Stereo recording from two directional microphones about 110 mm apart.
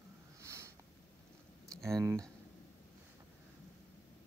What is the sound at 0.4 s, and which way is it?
Snort, 25° right (ahead or behind).